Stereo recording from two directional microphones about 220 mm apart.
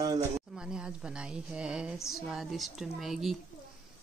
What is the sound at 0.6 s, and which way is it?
A woman's voice, 5° right (ahead or behind).